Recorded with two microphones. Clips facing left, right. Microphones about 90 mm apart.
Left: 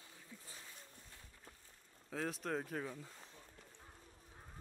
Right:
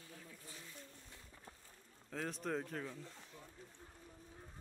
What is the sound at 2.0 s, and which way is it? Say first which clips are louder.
Speech: left 1 dB; centre (ahead or behind).